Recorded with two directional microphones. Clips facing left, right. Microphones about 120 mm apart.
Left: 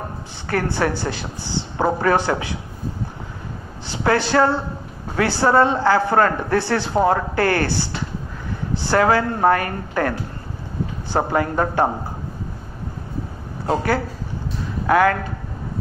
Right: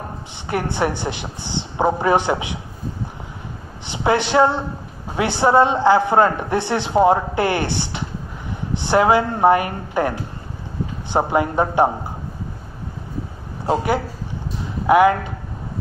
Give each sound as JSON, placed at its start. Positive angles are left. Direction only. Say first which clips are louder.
{"t": 0.5, "sound": "a man's voice", "louder": "even", "side_deg": -20}
{"t": 3.8, "sound": "a man's voice", "louder": "even", "side_deg": -20}
{"t": 13.7, "sound": "speech", "louder": "right 1 dB", "side_deg": -20}